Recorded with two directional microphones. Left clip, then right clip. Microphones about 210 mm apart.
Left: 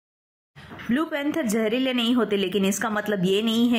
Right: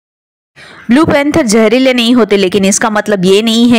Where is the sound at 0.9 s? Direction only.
40° right (ahead or behind).